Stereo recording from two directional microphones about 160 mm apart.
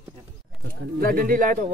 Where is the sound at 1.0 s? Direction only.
60° right (ahead or behind).